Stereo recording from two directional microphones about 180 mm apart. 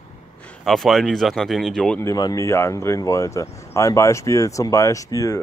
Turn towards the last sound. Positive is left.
turn(degrees=20)  # may be behind; listen again after turning